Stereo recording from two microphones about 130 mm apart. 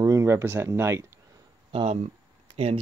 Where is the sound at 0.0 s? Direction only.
20° right (ahead or behind).